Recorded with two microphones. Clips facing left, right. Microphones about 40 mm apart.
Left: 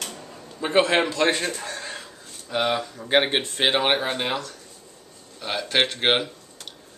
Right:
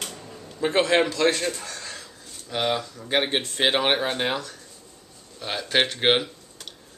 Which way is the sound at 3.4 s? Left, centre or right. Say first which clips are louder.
Left 1 dB; centre.